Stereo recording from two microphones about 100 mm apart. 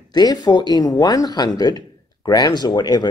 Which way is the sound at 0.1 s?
45° left (ahead or behind).